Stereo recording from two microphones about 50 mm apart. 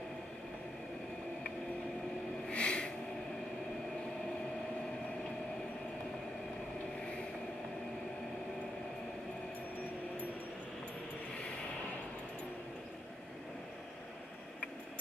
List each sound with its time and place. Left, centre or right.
2.5 s snort: left